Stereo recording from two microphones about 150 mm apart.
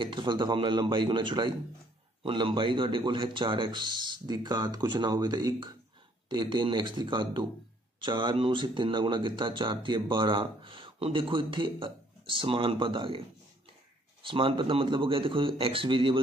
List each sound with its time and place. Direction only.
0.0 s speech: 30° right (ahead or behind)
14.2 s speech: 35° right (ahead or behind)